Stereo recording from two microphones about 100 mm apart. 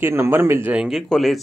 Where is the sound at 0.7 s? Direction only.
5° right (ahead or behind).